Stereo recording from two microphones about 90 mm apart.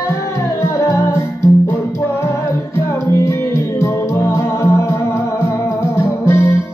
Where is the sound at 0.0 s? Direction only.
30° left (ahead or behind).